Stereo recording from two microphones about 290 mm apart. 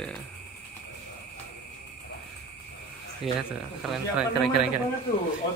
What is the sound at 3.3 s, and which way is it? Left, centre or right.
Speech, centre.